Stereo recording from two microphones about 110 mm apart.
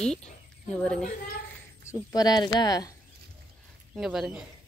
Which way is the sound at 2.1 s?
40° left (ahead or behind).